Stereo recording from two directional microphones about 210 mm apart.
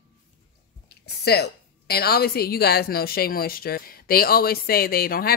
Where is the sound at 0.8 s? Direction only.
50° left (ahead or behind).